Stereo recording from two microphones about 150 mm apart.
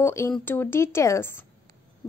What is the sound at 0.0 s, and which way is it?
A woman's voice, 20° left (ahead or behind).